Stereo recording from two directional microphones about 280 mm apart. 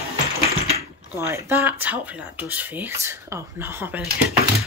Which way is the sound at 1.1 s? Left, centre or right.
Centre.